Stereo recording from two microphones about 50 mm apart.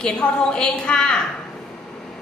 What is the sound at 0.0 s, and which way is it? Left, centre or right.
A woman's voice, centre.